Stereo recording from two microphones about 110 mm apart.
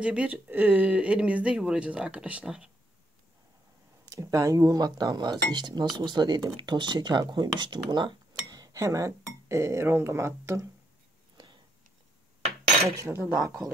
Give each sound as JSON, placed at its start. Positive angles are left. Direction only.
{"t": 0.0, "sound": "speech", "side_deg": -10}
{"t": 4.0, "sound": "speech", "side_deg": -30}
{"t": 12.9, "sound": "speech", "side_deg": -25}